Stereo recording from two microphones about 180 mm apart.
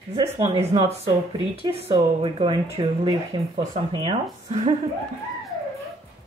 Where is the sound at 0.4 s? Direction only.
35° right (ahead or behind).